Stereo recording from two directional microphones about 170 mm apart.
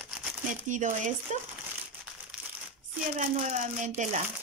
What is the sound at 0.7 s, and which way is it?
Speech, 45° right (ahead or behind).